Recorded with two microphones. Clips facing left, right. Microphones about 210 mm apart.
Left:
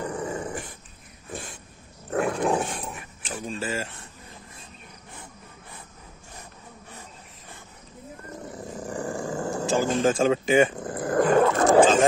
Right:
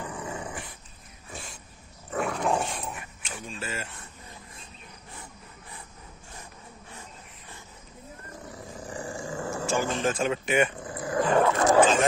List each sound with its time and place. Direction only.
0.0 s dog: 45° left (ahead or behind)
2.0 s dog: 55° left (ahead or behind)
3.3 s a sound: 35° left (ahead or behind)
8.7 s a sound: 45° left (ahead or behind)
9.4 s dog: 35° left (ahead or behind)
10.8 s dog: 55° left (ahead or behind)